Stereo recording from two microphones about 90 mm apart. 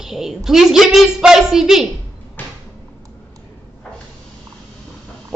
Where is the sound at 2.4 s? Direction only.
20° left (ahead or behind).